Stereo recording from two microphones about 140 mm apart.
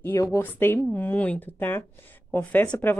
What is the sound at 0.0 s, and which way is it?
Speech, 20° left (ahead or behind).